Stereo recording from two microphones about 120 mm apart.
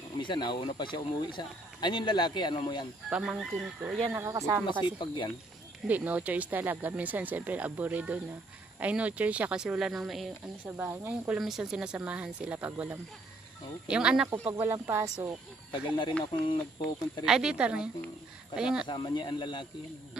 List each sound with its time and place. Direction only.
0.2 s speech: 40° left (ahead or behind)
3.1 s speech: 5° right (ahead or behind)
4.1 s speech: 25° right (ahead or behind)
4.8 s speech: 40° left (ahead or behind)
5.9 s speech: 15° right (ahead or behind)
10.8 s speech: 15° right (ahead or behind)
11.3 s speech: centre (ahead or behind)
14.3 s speech: 20° right (ahead or behind)
15.7 s speech: 40° left (ahead or behind)
17.2 s speech: 5° right (ahead or behind)
18.9 s speech: 40° left (ahead or behind)